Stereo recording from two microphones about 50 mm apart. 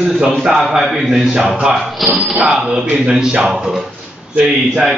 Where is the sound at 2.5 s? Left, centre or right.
Centre.